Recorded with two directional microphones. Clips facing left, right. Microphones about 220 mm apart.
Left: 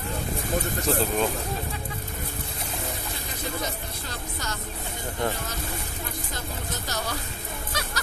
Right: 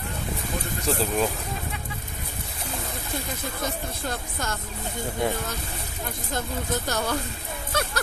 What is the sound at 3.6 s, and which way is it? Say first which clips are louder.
Speech: right 3 dB; 50° right (ahead or behind).